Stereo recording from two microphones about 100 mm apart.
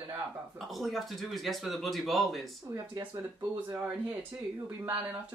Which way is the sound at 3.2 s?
25° right (ahead or behind).